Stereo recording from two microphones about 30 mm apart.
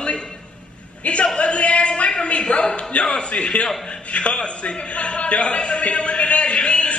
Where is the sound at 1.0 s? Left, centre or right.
Left.